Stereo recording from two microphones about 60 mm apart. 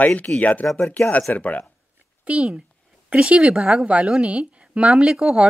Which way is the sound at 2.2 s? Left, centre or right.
Right.